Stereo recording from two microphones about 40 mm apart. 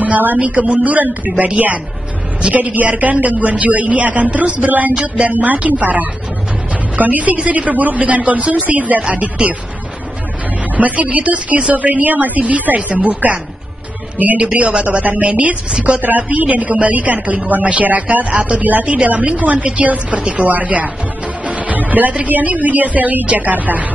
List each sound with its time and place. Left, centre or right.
0.0 s speech: right
0.4 s a woman's voice: right
10.8 s a woman's voice: right